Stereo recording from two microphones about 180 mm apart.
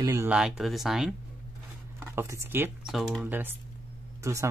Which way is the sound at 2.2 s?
15° right (ahead or behind).